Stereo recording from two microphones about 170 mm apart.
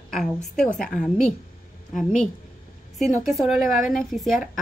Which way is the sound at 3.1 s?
45° left (ahead or behind).